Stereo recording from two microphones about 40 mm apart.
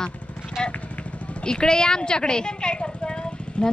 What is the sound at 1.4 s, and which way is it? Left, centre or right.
Speech, centre.